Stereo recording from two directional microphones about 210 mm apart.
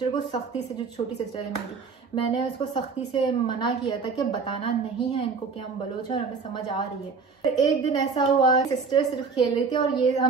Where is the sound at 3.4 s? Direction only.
20° left (ahead or behind).